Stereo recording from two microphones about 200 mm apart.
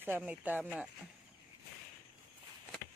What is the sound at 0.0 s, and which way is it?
Speech, 10° right (ahead or behind).